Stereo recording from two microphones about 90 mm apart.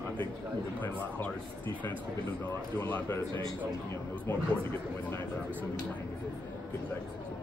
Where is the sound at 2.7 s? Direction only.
20° left (ahead or behind).